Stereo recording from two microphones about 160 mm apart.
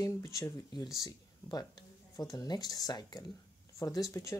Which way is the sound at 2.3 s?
25° left (ahead or behind).